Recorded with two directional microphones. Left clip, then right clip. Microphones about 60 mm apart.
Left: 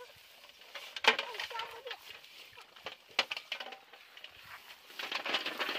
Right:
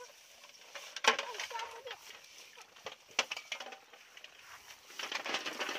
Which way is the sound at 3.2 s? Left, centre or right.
Left.